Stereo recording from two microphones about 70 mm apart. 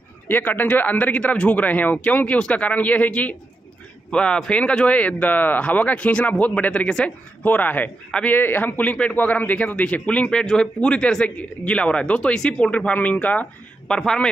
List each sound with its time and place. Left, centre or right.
0.3 s speech: left; by 14.3 s centre